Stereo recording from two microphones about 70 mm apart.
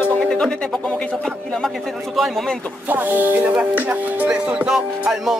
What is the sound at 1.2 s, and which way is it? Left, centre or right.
Music, centre.